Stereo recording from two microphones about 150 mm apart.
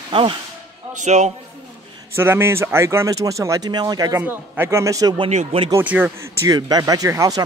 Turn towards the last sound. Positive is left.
turn(degrees=-25)  # may be behind; listen again after turning